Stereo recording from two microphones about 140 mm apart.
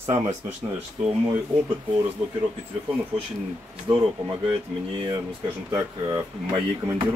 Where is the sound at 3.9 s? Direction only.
35° right (ahead or behind).